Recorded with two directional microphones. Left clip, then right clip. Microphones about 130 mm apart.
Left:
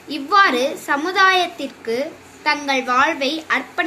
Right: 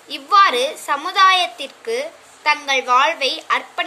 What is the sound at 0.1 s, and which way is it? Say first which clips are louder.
A child's voice: right 1 dB; 50° right (ahead or behind).